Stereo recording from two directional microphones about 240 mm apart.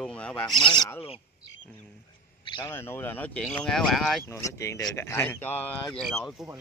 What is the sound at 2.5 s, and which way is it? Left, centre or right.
Speech, centre.